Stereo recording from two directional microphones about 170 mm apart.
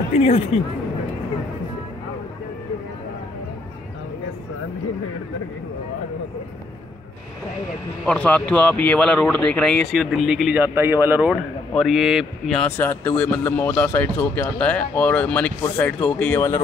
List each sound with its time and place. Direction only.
0.1 s speech: 40° left (ahead or behind)
8.0 s speech: 5° left (ahead or behind); by 11.3 s 10° right (ahead or behind)
11.7 s speech: centre (ahead or behind)
12.6 s speech: 10° left (ahead or behind)